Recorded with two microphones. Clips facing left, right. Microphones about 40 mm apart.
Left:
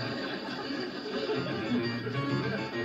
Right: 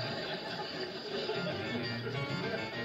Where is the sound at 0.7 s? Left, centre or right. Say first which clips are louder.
Left 4 dB; left.